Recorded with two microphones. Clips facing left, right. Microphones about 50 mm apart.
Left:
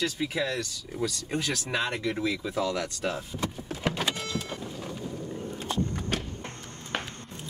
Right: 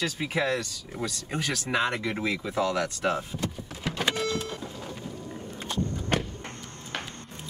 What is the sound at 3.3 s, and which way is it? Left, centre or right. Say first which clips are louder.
Speech: even; centre.